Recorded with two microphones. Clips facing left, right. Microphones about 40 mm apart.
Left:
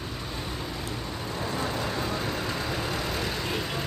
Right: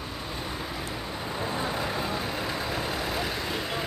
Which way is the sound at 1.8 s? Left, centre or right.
Centre.